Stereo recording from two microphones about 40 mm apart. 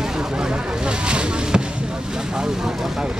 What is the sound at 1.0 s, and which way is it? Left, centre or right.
Speech, right.